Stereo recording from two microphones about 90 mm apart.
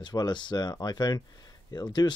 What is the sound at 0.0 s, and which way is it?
Speech, 50° left (ahead or behind).